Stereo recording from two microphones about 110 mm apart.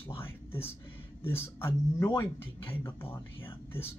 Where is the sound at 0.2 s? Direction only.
20° left (ahead or behind).